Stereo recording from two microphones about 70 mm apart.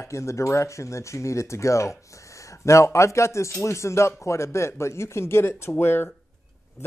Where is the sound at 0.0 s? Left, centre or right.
Left.